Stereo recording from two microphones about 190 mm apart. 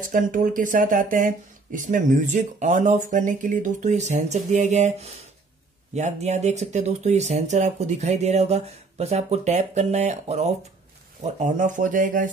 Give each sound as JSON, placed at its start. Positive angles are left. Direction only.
{"t": 0.1, "sound": "speech", "side_deg": -45}